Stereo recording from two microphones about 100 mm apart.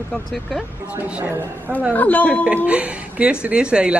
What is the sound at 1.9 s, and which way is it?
Speech, 15° left (ahead or behind).